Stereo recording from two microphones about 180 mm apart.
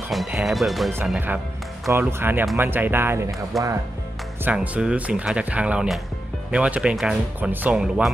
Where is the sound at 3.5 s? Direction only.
Centre (ahead or behind).